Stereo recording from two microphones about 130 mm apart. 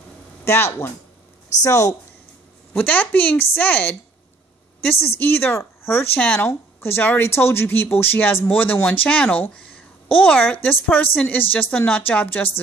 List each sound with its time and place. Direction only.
0.5 s speech: 20° left (ahead or behind)
2.8 s a woman's voice: 10° left (ahead or behind)
4.8 s a woman's voice: 15° left (ahead or behind)